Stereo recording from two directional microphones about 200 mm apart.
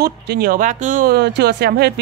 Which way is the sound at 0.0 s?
50° right (ahead or behind).